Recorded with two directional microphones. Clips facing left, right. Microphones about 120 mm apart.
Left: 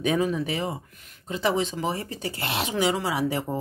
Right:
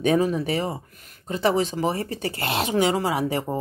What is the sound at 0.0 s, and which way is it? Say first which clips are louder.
Speech: right 3 dB; 40° right (ahead or behind).